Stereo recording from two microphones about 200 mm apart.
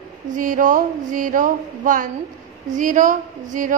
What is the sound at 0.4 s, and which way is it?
A woman's voice, 40° right (ahead or behind).